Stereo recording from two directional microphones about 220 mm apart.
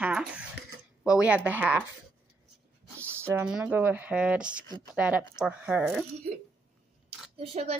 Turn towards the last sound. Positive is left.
turn(degrees=-25)  # may be behind; listen again after turning